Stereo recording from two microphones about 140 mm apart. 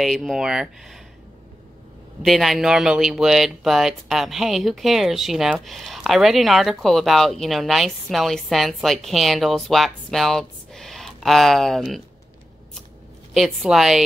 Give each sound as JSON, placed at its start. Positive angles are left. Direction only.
{"t": 0.0, "sound": "speech", "side_deg": 0}
{"t": 2.2, "sound": "speech", "side_deg": 0}
{"t": 13.3, "sound": "speech", "side_deg": 0}